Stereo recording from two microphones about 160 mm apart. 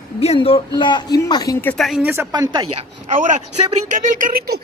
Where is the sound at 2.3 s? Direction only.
25° right (ahead or behind).